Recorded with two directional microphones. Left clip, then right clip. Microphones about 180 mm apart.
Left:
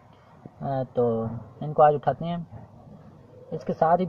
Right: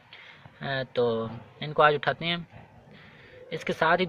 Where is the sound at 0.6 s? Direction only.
30° right (ahead or behind).